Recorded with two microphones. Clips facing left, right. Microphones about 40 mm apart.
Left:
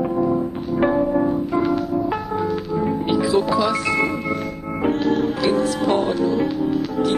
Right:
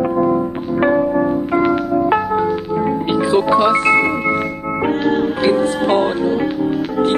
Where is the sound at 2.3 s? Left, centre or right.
Right.